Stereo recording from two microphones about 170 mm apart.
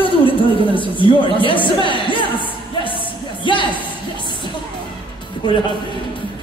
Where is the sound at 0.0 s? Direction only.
30° left (ahead or behind).